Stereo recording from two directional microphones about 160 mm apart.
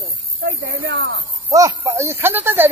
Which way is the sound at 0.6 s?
90° right.